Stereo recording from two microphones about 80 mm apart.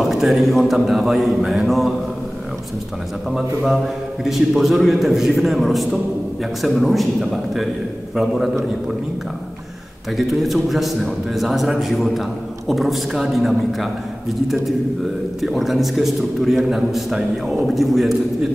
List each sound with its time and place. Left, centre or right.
0.0 s a man's voice: centre
3.3 s a man's voice: centre
10.1 s a man's voice: centre
15.4 s a man's voice: centre